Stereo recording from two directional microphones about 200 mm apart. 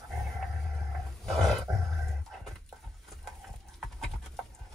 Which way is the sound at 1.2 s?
Centre (ahead or behind).